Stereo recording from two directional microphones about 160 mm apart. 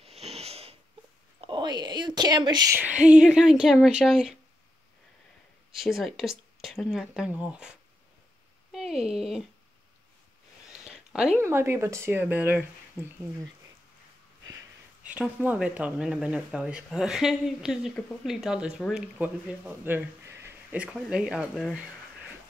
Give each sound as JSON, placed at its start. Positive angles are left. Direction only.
{"t": 0.0, "sound": "sniff", "side_deg": -40}
{"t": 1.4, "sound": "speech", "side_deg": -30}
{"t": 2.8, "sound": "speech", "side_deg": -5}
{"t": 5.8, "sound": "speech", "side_deg": 0}
{"t": 9.0, "sound": "speech", "side_deg": -5}
{"t": 10.7, "sound": "a sound", "side_deg": -5}
{"t": 11.4, "sound": "speech", "side_deg": -15}
{"t": 15.0, "sound": "speech", "side_deg": -10}